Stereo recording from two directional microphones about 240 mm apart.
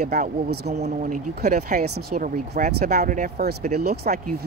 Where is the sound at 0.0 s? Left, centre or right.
Right.